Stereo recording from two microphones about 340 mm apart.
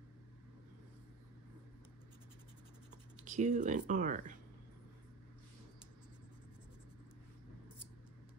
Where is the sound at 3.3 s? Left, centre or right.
Right.